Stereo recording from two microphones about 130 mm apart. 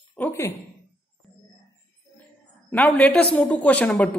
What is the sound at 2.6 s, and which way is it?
Speech, 10° left (ahead or behind).